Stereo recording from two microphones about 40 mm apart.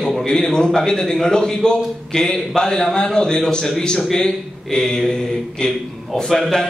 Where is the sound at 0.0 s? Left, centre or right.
Centre.